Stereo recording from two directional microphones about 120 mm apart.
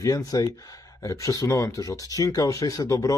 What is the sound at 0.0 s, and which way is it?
Speech, 30° left (ahead or behind).